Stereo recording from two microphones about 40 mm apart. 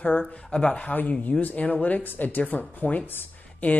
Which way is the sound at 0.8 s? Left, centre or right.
Left.